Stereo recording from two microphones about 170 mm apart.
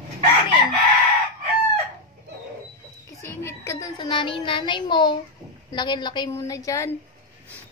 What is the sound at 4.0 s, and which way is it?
A woman's voice, 30° left (ahead or behind).